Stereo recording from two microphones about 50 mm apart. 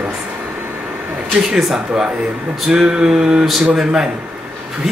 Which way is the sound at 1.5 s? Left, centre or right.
Centre.